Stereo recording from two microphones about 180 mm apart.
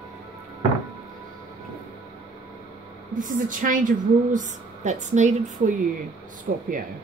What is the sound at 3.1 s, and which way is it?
A woman's voice, 45° right (ahead or behind).